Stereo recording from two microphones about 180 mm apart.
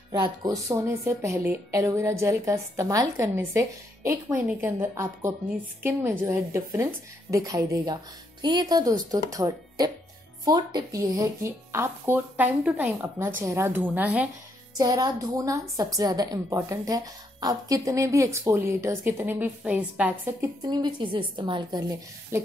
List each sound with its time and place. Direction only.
0.1 s a woman's voice: 25° right (ahead or behind)
14.8 s a woman's voice: 20° right (ahead or behind)
20.6 s a woman's voice: 25° right (ahead or behind)